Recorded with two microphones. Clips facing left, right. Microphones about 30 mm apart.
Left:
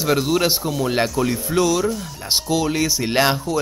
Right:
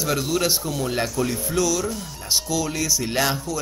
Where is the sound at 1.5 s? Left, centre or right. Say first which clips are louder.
Left 6 dB; left.